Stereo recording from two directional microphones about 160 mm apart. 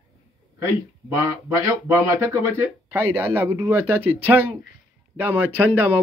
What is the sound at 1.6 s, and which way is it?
Speech, 15° right (ahead or behind).